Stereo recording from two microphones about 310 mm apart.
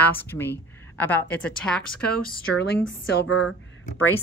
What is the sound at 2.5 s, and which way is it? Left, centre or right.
Speech, left.